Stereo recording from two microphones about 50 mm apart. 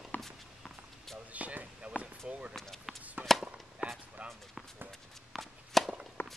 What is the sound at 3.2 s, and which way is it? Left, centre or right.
Chop, right.